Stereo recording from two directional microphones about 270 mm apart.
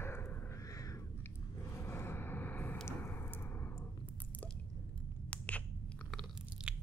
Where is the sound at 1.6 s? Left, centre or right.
Centre.